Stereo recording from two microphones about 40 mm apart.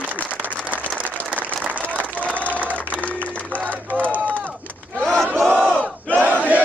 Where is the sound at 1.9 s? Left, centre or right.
Right.